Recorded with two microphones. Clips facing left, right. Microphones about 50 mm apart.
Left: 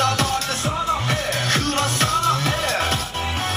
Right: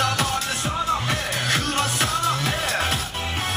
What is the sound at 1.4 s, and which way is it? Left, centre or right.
Music, centre.